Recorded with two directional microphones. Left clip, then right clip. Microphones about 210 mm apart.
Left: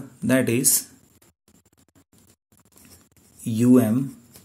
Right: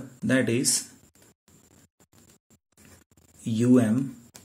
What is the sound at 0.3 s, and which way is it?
Speech, 35° left (ahead or behind).